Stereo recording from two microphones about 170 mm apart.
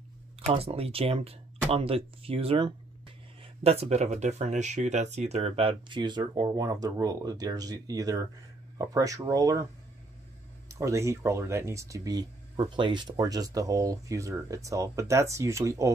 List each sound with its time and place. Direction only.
0.5 s speech: 35° right (ahead or behind)
10.7 s speech: 20° right (ahead or behind)